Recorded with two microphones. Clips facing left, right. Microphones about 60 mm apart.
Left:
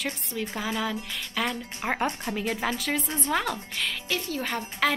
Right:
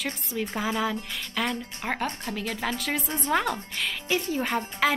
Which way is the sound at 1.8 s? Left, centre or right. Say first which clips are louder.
Left 3 dB; centre.